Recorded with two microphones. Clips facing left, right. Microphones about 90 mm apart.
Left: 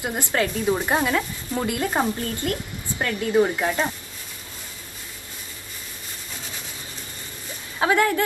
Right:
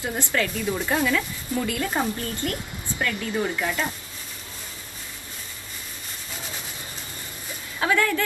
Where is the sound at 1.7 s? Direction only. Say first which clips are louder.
Left 5 dB; 25° left (ahead or behind).